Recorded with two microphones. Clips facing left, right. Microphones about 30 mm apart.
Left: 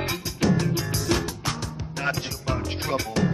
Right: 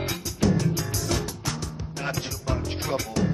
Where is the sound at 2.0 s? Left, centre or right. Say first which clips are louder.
Left 2 dB; centre.